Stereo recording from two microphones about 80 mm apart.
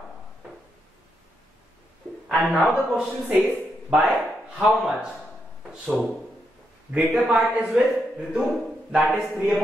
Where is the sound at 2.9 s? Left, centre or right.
Centre.